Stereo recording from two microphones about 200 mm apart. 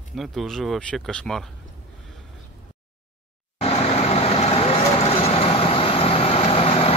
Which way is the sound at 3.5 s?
30° left (ahead or behind).